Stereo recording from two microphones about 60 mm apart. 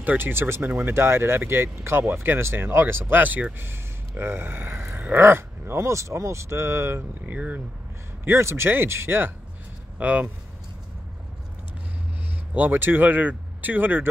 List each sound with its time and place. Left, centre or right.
0.2 s speech: right
3.5 s speech: right
5.2 s speech: right
7.0 s speech: right
8.3 s speech: right
9.9 s speech: right
12.5 s speech: right